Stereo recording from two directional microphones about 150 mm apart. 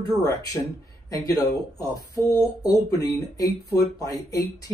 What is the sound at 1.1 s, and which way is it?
Speech, 25° left (ahead or behind).